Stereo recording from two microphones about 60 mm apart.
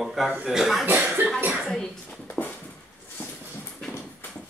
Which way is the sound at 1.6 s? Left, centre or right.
Centre.